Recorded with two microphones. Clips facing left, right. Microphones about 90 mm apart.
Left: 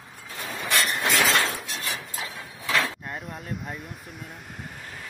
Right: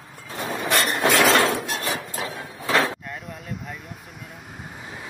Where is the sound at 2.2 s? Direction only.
40° right (ahead or behind).